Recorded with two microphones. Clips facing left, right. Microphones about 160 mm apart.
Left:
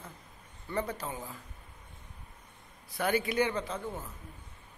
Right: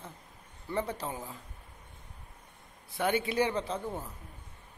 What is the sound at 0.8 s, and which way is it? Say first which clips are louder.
Speech: right 1 dB; 30° right (ahead or behind).